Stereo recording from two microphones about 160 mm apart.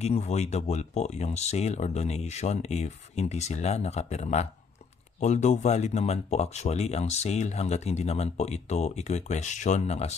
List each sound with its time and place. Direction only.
0.0 s speech: 45° left (ahead or behind)